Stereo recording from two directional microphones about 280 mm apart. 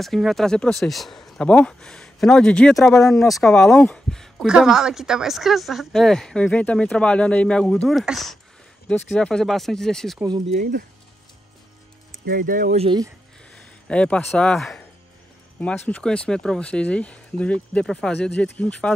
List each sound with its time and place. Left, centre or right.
0.0 s speech: centre
10.4 s speech: right
12.1 s speech: right
13.8 s speech: centre